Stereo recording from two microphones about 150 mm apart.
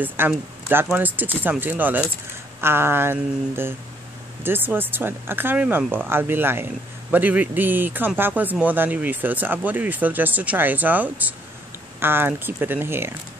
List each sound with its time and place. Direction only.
0.3 s a man's voice: 5° right (ahead or behind)